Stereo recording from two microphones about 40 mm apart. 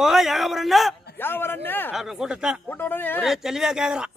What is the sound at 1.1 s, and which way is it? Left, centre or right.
Speech, left.